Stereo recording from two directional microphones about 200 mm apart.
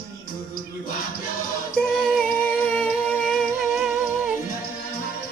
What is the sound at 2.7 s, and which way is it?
Humming, 5° left (ahead or behind).